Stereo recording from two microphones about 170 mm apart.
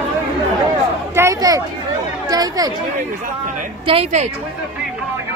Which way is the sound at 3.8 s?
35° right (ahead or behind).